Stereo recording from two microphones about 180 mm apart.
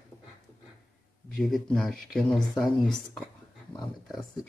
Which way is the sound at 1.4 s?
5° left (ahead or behind).